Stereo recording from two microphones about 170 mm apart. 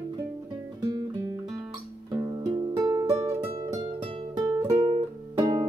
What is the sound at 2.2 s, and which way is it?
Music, 20° right (ahead or behind).